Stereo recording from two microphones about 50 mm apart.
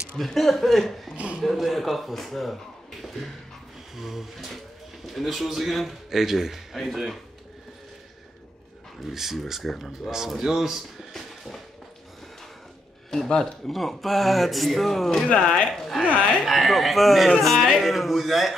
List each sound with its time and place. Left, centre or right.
0.2 s speech: centre
1.1 s a sound: right
1.4 s speech: centre
3.9 s speech: centre
9.1 s speech: centre
13.1 s speech: centre
15.2 s speech: centre